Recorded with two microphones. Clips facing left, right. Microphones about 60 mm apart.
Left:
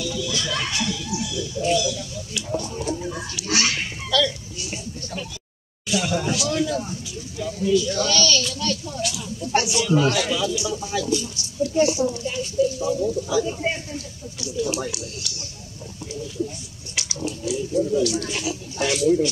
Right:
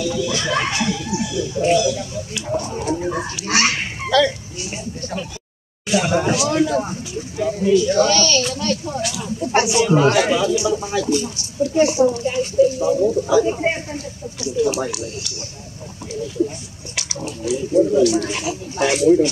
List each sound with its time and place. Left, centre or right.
0.0 s speech: right
5.9 s speech: right
16.4 s speech: right